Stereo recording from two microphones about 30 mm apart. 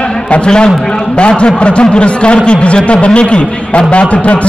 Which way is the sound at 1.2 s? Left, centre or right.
Left.